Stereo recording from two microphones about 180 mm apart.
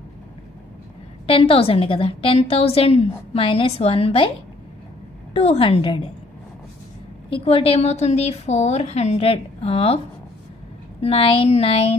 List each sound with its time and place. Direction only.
1.2 s a woman's voice: 30° left (ahead or behind)
5.3 s a woman's voice: 35° left (ahead or behind)
7.2 s a woman's voice: 30° left (ahead or behind)
11.0 s a woman's voice: 30° left (ahead or behind)